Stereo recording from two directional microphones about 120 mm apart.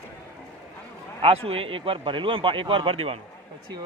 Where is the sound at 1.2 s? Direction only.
50° right (ahead or behind).